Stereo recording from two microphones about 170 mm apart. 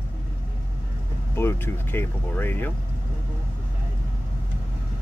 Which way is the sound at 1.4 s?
15° left (ahead or behind).